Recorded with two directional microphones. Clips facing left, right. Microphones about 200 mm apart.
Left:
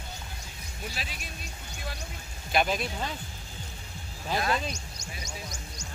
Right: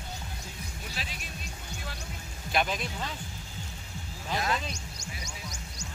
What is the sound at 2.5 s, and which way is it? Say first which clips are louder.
Speech: left 2 dB; 5° left (ahead or behind).